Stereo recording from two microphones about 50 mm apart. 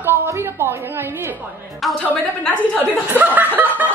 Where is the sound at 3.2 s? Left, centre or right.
Right.